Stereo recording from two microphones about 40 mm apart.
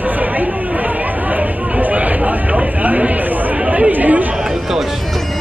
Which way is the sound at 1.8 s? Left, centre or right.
Right.